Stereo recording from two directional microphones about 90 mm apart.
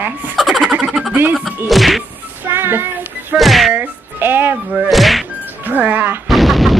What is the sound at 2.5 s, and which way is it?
Child singing, 25° right (ahead or behind).